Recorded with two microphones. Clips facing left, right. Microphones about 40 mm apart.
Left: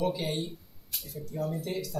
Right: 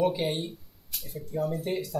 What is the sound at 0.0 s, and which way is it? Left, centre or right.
Speech, right.